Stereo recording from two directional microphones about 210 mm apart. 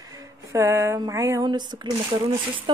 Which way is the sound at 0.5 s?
15° right (ahead or behind).